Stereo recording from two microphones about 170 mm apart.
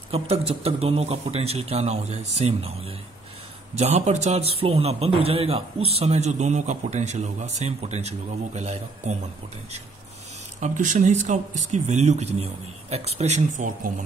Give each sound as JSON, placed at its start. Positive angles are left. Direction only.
{"t": 0.1, "sound": "a man's voice", "side_deg": -35}
{"t": 10.6, "sound": "a man's voice", "side_deg": -45}